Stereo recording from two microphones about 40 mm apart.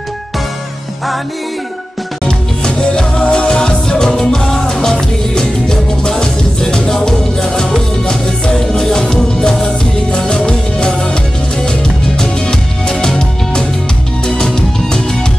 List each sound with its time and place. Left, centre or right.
2.2 s music: left